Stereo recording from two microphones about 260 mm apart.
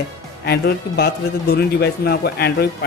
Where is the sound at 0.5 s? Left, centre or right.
Left.